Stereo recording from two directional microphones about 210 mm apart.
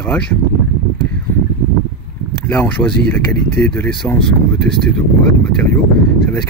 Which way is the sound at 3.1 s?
5° left (ahead or behind).